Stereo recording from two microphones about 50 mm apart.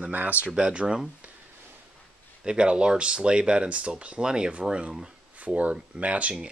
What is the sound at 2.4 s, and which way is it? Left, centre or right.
Speech, centre.